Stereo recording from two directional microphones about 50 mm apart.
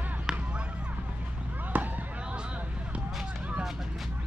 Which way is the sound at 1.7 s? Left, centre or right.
Right.